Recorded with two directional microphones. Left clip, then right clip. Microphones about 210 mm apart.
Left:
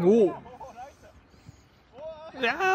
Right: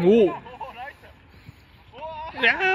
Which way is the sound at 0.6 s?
50° left (ahead or behind).